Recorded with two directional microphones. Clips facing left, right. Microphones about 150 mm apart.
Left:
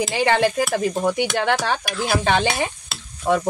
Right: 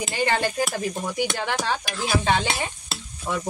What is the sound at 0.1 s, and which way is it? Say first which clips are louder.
Stir: left 4 dB; 75° left (ahead or behind).